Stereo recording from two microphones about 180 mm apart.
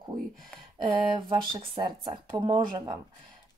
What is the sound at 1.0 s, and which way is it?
Speech, 25° right (ahead or behind).